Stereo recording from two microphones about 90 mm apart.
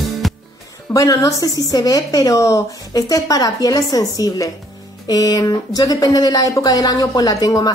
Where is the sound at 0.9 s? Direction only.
40° left (ahead or behind).